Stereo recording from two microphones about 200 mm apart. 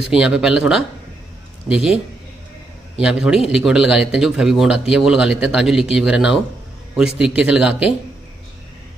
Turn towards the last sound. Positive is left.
turn(degrees=-5)  # may be behind; listen again after turning